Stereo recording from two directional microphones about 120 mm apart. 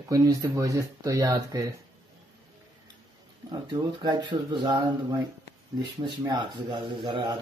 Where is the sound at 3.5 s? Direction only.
40° right (ahead or behind).